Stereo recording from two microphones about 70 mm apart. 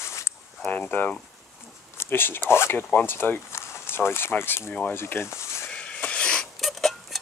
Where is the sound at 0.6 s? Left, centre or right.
Centre.